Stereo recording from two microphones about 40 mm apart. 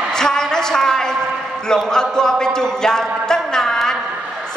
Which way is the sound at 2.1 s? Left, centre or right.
Centre.